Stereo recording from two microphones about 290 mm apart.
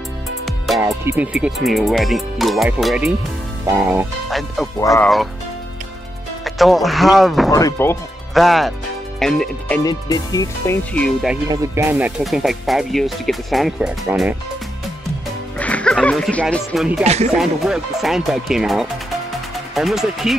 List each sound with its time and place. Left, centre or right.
0.7 s speech: centre
6.4 s speech: centre
9.8 s speech: centre
11.4 s speech: centre
15.6 s speech: centre
17.0 s speech: right
17.3 s speech: centre
19.3 s music: centre